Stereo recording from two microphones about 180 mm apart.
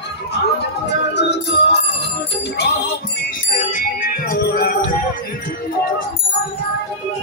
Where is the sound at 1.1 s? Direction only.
70° left (ahead or behind).